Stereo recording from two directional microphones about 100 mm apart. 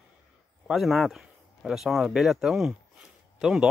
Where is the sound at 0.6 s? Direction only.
Centre (ahead or behind).